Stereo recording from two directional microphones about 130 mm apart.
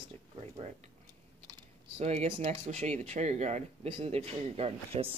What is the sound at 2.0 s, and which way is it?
Speech, 50° right (ahead or behind).